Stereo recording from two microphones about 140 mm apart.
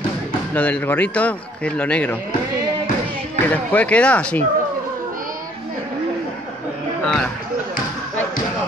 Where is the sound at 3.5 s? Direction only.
10° left (ahead or behind).